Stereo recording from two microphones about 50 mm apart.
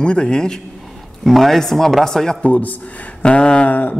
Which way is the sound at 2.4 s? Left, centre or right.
Left.